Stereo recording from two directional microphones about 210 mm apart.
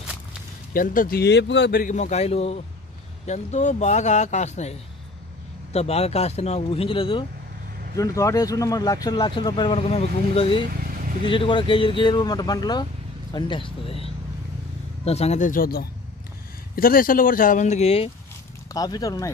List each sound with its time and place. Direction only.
0.7 s a man's voice: 40° left (ahead or behind); by 7.2 s 25° left (ahead or behind)
7.9 s a man's voice: 15° left (ahead or behind)
18.7 s speech: 15° left (ahead or behind)